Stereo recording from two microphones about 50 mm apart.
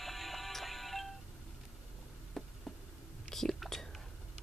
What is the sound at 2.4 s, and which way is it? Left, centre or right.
Insect, centre.